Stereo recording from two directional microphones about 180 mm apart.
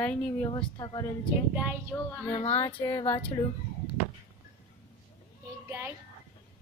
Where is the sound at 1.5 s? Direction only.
10° right (ahead or behind).